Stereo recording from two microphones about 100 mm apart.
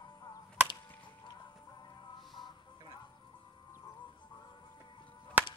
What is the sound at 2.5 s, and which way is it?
Music, 45° left (ahead or behind).